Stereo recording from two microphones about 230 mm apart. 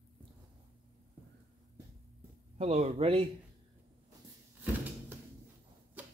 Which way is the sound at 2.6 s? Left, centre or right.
Right.